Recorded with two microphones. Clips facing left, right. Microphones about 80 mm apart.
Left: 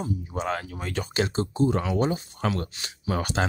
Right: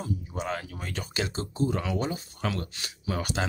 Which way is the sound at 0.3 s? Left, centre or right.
Left.